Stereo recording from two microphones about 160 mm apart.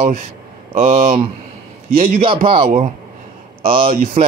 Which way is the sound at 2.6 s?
50° right (ahead or behind).